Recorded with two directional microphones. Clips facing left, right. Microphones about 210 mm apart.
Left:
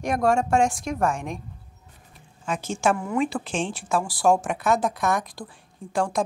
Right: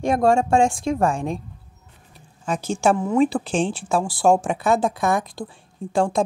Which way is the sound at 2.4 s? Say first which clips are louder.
Right 4 dB; 35° right (ahead or behind).